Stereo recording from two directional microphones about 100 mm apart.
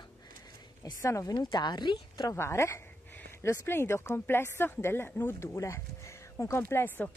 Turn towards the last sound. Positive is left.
turn(degrees=20)  # may be behind; listen again after turning